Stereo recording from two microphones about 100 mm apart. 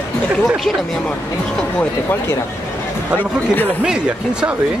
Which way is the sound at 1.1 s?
10° left (ahead or behind).